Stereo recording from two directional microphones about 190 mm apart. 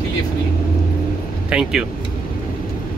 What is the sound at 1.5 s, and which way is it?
Speech, 5° right (ahead or behind).